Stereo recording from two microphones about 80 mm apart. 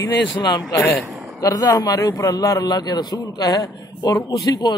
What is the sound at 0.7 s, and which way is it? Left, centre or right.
Speech, left.